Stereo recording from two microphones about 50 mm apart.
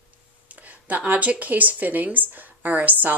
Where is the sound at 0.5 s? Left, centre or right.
Right.